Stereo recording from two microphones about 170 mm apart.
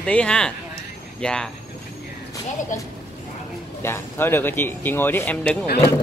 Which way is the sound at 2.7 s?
50° left (ahead or behind).